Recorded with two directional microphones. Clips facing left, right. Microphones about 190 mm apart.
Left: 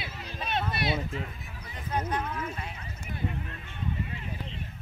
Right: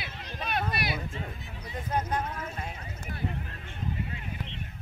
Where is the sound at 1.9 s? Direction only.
45° right (ahead or behind).